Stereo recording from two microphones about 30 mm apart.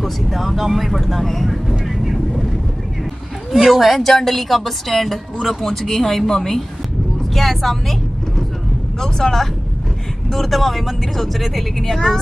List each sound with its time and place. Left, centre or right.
0.0 s speech: centre
1.0 s vehicle: centre
3.5 s speech: centre
4.0 s speech: centre
9.0 s speech: centre